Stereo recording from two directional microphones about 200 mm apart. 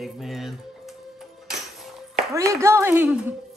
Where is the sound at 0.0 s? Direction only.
Centre (ahead or behind).